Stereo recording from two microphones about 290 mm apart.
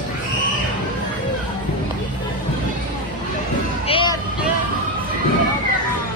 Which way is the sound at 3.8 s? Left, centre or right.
Centre.